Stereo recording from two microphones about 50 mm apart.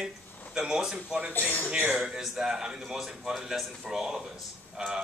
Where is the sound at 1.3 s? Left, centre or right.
Left.